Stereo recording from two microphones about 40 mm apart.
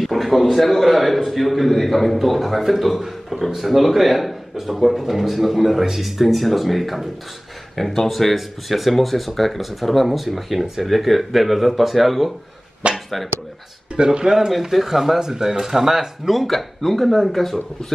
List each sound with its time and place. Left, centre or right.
0.0 s a man's voice: centre
13.9 s speech: centre
14.5 s a man's voice: centre